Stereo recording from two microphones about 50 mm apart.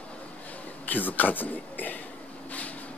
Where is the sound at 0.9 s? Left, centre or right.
Left.